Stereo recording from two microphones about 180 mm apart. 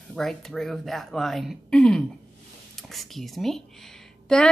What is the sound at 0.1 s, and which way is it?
Speech, centre (ahead or behind).